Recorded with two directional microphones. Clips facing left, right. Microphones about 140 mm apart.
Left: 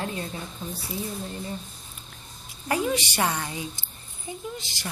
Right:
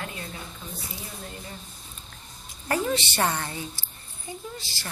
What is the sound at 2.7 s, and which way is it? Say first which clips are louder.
A woman's voice: left 1 dB; 10° left (ahead or behind).